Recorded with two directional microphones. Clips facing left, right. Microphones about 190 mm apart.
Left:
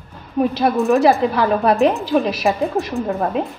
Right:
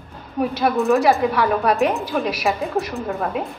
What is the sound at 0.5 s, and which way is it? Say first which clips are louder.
A woman's voice: left 1 dB; 20° left (ahead or behind).